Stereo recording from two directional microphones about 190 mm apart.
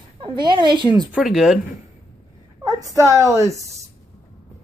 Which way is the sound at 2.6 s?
15° right (ahead or behind).